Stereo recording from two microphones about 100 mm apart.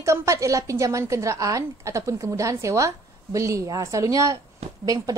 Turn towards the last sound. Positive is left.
turn(degrees=-35)  # may be behind; listen again after turning